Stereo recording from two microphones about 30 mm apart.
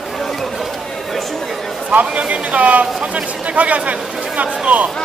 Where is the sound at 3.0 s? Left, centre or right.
Right.